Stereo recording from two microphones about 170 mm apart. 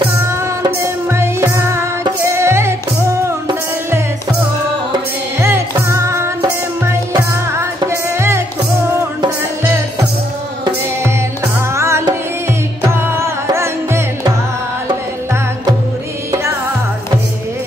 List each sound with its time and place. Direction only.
0.3 s music: 15° right (ahead or behind)
5.4 s music: 15° right (ahead or behind)
10.6 s music: 15° right (ahead or behind)